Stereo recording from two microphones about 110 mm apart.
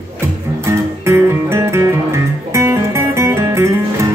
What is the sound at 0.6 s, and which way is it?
Music, 25° right (ahead or behind).